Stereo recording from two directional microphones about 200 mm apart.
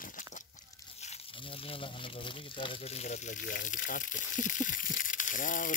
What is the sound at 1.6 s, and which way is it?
Speech, 25° left (ahead or behind).